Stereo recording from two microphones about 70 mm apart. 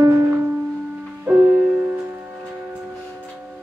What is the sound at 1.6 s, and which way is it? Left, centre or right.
Music, centre.